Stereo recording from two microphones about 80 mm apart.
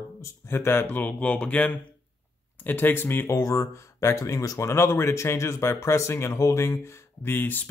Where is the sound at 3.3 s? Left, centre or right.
Left.